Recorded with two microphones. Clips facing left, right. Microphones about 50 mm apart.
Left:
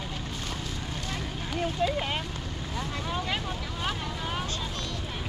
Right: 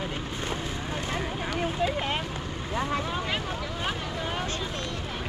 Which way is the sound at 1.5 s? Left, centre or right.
Centre.